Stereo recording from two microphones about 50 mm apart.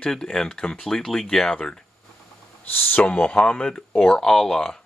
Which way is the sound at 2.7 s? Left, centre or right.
Left.